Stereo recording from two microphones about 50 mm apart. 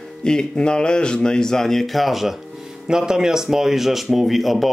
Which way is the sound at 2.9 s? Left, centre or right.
Centre.